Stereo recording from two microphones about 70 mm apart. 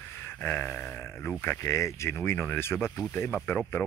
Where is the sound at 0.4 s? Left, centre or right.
Left.